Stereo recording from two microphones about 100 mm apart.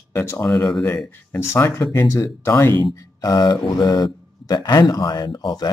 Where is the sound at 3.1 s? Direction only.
40° left (ahead or behind).